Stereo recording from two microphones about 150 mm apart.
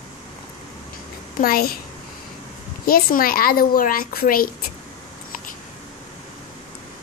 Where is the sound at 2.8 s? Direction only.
75° left (ahead or behind).